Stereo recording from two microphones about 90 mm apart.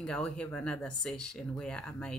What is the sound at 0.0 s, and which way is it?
Speech, 10° left (ahead or behind).